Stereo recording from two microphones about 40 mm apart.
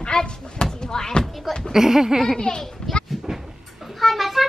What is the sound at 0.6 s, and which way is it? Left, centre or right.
Slam, centre.